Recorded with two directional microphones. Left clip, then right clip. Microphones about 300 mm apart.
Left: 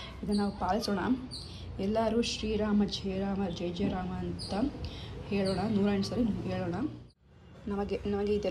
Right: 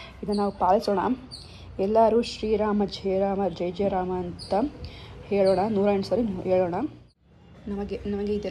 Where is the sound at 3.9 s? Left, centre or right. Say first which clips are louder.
Right 10 dB; right.